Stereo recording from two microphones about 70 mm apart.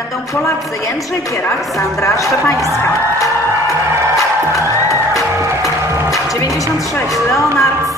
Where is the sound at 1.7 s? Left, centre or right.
Left.